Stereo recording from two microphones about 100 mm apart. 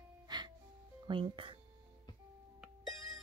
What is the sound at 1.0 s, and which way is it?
Speech, 50° right (ahead or behind).